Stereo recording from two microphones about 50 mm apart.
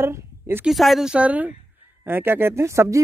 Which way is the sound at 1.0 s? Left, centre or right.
Right.